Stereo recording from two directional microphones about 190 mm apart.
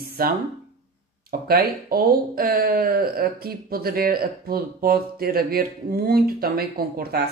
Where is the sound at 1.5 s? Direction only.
50° right (ahead or behind).